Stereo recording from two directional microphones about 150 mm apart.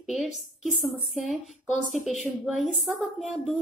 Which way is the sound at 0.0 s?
Centre (ahead or behind).